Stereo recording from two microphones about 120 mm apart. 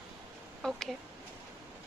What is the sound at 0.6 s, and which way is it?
Speech, centre (ahead or behind).